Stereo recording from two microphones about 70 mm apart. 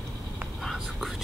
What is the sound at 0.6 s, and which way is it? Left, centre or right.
Whispering, centre.